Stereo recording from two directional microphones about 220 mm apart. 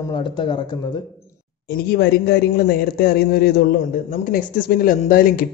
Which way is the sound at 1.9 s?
45° left (ahead or behind).